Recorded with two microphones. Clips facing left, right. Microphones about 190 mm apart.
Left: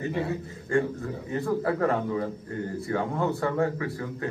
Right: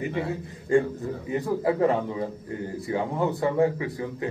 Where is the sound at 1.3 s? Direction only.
15° right (ahead or behind).